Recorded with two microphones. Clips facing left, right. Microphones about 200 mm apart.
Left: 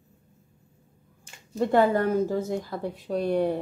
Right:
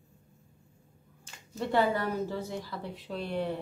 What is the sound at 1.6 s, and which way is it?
Speech, 50° left (ahead or behind).